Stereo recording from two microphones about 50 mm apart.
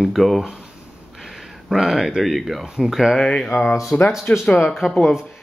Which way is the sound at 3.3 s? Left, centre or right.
Left.